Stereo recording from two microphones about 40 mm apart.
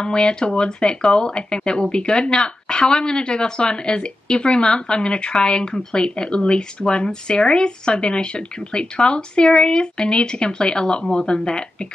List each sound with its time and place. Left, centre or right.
0.0 s speech: left